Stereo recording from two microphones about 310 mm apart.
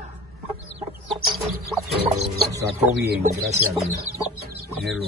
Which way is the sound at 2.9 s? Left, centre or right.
Right.